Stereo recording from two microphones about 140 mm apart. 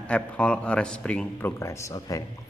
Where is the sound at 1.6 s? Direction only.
25° left (ahead or behind).